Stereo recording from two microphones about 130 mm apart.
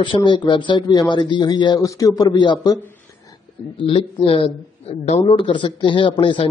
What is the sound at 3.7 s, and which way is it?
A man's voice, 45° left (ahead or behind).